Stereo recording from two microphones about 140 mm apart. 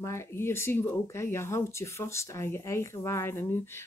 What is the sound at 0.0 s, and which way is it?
Speech, 20° left (ahead or behind).